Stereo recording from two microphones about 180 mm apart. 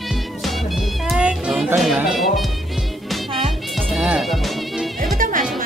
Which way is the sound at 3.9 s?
5° right (ahead or behind).